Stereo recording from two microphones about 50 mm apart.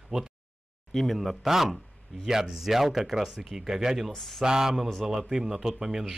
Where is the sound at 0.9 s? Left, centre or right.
Centre.